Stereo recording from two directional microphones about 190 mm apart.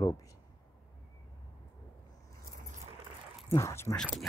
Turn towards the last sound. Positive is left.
turn(degrees=0)  # may be behind; listen again after turning